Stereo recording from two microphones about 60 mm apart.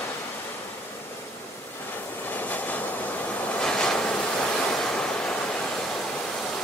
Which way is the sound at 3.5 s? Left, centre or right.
Centre.